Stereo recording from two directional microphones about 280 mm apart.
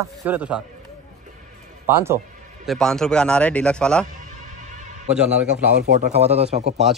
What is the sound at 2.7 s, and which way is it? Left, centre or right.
Speech, centre.